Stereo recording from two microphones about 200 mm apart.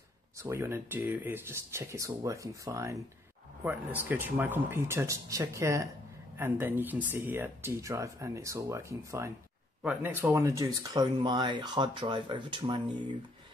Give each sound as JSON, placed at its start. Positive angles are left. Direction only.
{"t": 0.4, "sound": "speech", "side_deg": -10}